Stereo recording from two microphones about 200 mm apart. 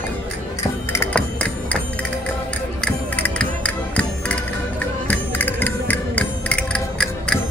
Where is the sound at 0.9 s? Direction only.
10° left (ahead or behind).